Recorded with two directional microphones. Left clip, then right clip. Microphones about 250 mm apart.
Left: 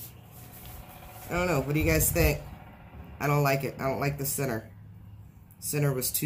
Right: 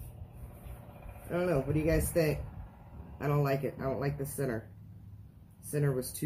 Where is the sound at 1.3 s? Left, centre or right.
Left.